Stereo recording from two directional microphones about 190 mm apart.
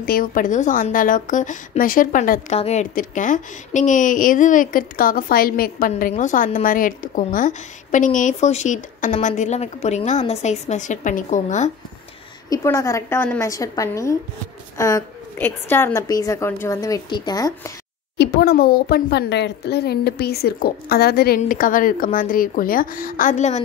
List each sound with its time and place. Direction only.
0.0 s a woman's voice: 50° left (ahead or behind)
2.5 s a woman's voice: 35° left (ahead or behind)
12.4 s a woman's voice: 15° left (ahead or behind)
18.1 s a woman's voice: 60° left (ahead or behind); by 23.6 s 40° left (ahead or behind)